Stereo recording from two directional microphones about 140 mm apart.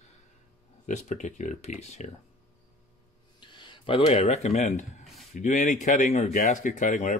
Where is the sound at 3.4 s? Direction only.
35° left (ahead or behind).